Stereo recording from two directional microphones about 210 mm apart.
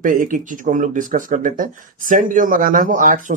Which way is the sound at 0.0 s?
40° right (ahead or behind).